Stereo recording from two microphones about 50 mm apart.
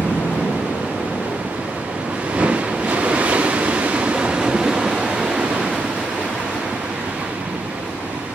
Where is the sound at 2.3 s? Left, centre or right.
Right.